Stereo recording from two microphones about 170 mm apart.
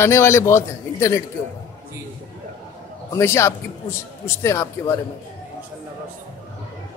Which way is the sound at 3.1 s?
15° left (ahead or behind).